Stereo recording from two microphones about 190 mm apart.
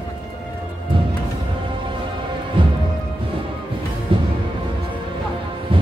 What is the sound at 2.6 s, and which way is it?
Music, 25° right (ahead or behind).